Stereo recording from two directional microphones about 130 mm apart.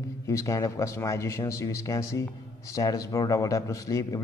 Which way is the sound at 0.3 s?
25° left (ahead or behind).